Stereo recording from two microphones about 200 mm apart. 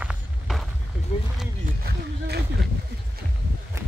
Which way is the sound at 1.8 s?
55° right (ahead or behind).